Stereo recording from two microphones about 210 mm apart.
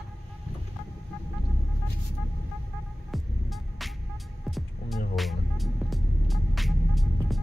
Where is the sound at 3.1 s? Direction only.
Centre (ahead or behind).